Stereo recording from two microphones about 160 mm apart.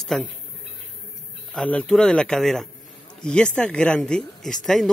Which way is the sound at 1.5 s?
10° left (ahead or behind).